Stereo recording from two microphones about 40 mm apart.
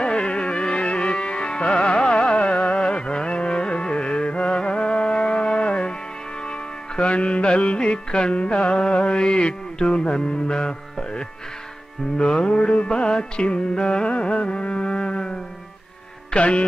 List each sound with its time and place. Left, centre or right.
0.0 s music: left
16.3 s speech: left